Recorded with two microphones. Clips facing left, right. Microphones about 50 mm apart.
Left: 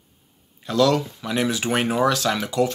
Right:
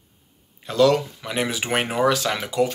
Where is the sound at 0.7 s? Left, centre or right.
Right.